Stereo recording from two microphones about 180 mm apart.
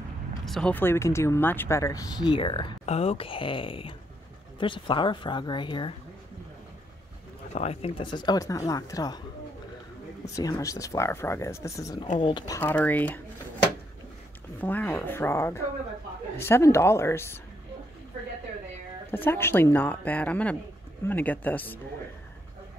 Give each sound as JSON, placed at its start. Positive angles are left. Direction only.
{"t": 0.5, "sound": "speech", "side_deg": 5}
{"t": 7.5, "sound": "speech", "side_deg": 35}
{"t": 10.3, "sound": "speech", "side_deg": 20}
{"t": 12.5, "sound": "speech", "side_deg": 10}
{"t": 14.6, "sound": "speech", "side_deg": 10}
{"t": 19.0, "sound": "speech", "side_deg": 10}